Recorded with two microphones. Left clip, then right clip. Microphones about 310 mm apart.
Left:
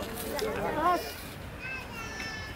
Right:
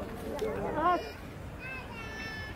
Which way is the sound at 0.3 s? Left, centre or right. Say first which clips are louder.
Left 2 dB; centre.